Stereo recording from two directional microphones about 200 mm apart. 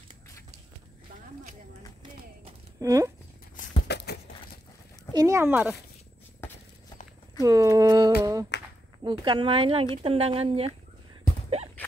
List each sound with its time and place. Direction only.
2.8 s speech: 15° right (ahead or behind)
3.8 s a sound: 55° left (ahead or behind)
5.1 s speech: 15° right (ahead or behind)
7.4 s speech: 15° right (ahead or behind)
8.2 s humming: 15° right (ahead or behind)
9.0 s speech: 25° right (ahead or behind)